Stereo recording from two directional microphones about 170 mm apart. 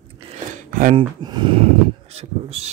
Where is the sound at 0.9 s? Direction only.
30° right (ahead or behind).